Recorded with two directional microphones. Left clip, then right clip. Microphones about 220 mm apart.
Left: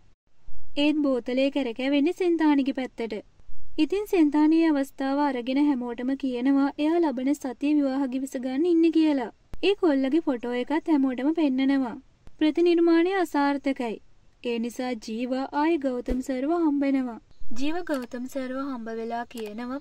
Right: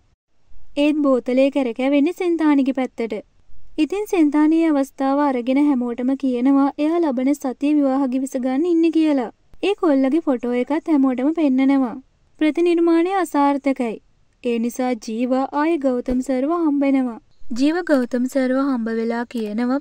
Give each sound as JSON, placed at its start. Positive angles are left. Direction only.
{"t": 0.7, "sound": "speech", "side_deg": -25}
{"t": 17.6, "sound": "speech", "side_deg": -45}